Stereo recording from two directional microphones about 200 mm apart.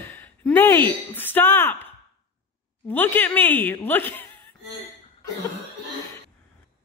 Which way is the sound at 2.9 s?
10° left (ahead or behind).